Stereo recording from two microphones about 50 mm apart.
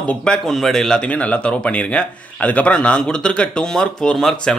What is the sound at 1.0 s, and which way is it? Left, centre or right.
Speech, left.